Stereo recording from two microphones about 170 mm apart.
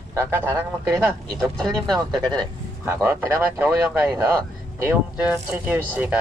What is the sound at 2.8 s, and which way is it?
Speech, 15° right (ahead or behind).